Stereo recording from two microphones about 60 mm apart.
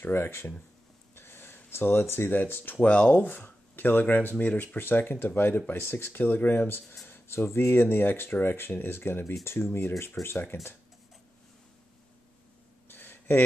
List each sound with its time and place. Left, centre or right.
0.0 s speech: left
2.8 s speech: left
6.2 s speech: left
7.1 s speech: left
12.9 s a sound: left